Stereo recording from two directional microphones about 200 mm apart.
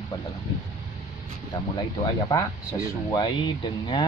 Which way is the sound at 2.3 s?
20° left (ahead or behind).